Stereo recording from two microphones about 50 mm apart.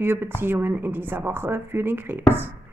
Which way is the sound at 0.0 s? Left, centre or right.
Right.